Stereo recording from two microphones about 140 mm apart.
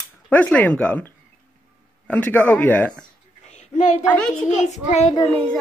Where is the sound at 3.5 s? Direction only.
55° left (ahead or behind).